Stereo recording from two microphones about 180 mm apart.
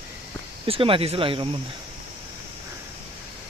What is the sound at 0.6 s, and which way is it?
Speech, 30° right (ahead or behind).